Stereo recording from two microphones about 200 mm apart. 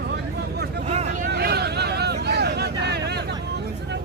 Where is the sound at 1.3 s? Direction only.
55° right (ahead or behind).